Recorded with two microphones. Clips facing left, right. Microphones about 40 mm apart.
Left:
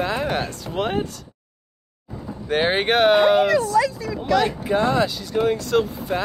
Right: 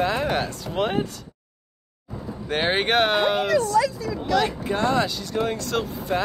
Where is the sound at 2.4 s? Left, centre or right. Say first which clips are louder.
Left 3 dB; centre.